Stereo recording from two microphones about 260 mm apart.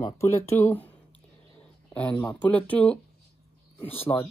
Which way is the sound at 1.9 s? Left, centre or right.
Centre.